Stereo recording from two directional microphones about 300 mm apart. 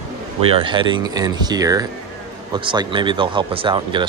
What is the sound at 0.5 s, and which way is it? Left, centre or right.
Speech, centre.